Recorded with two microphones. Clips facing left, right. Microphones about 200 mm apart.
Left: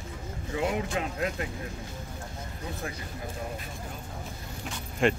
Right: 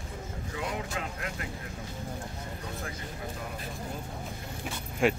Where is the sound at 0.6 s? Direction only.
25° left (ahead or behind).